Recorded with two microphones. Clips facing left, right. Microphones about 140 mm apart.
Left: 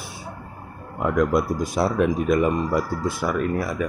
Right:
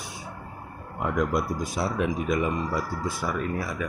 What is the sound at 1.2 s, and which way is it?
Speech, 90° left.